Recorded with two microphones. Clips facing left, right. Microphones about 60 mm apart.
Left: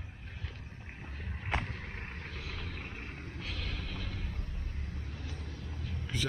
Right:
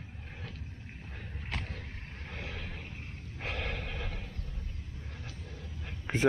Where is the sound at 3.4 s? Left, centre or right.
Right.